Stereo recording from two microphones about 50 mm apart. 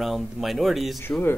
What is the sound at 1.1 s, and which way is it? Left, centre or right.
Speech, left.